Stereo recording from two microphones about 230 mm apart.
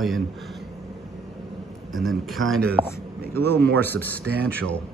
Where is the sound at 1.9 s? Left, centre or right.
Centre.